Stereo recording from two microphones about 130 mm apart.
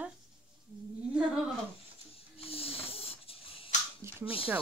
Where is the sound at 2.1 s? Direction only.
50° left (ahead or behind).